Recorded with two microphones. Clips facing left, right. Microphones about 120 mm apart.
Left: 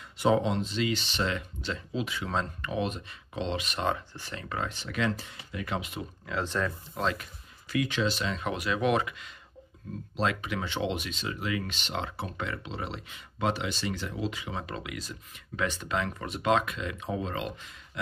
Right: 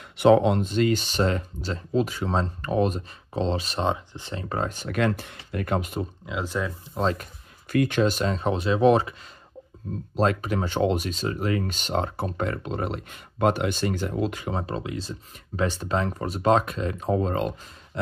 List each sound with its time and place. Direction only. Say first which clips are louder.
0.2 s speech: right 7 dB; 60° right (ahead or behind); by 6.0 s 45° right (ahead or behind)
6.2 s speech: left 1 dB; 10° right (ahead or behind)
7.0 s speech: right 5 dB; 35° right (ahead or behind)
7.7 s speech: right 7 dB; 50° right (ahead or behind); by 9.1 s 30° right (ahead or behind)
10.1 s speech: right 6 dB; 45° right (ahead or behind)
14.6 s speech: right 7 dB; 30° right (ahead or behind)